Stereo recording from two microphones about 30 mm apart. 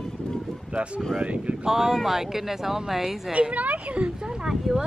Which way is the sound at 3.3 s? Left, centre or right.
Right.